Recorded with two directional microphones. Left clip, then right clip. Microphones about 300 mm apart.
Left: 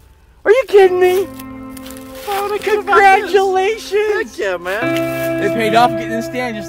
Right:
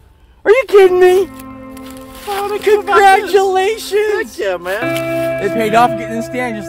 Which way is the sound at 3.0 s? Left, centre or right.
Right.